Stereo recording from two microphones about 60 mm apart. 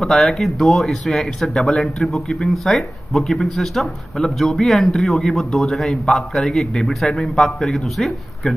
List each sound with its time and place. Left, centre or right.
0.0 s speech: centre